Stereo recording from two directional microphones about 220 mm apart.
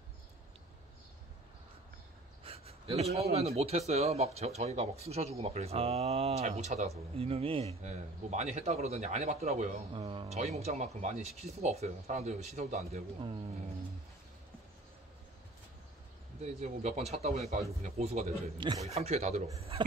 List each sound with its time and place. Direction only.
2.4 s a sound: 25° right (ahead or behind)
3.3 s a man's voice: 30° right (ahead or behind)
16.8 s a man's voice: 30° right (ahead or behind)